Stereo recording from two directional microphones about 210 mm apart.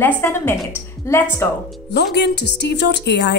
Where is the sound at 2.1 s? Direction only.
55° left (ahead or behind).